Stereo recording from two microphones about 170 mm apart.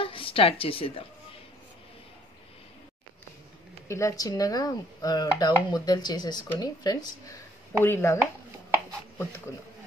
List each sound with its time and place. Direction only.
0.0 s a woman's voice: 30° left (ahead or behind)
3.8 s speech: 15° left (ahead or behind)